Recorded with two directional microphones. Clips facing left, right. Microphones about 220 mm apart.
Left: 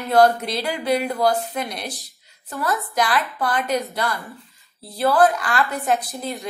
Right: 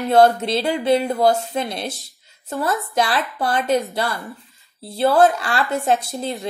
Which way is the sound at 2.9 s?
25° right (ahead or behind).